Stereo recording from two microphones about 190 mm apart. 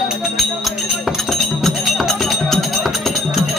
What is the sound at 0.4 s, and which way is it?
Music, centre (ahead or behind).